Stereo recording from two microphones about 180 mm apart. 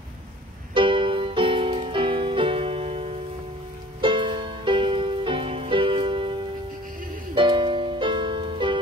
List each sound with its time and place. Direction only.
0.7 s music: 30° right (ahead or behind)
7.3 s music: 25° right (ahead or behind)